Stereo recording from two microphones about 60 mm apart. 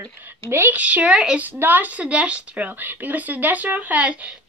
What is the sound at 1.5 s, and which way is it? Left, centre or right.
A woman's voice, right.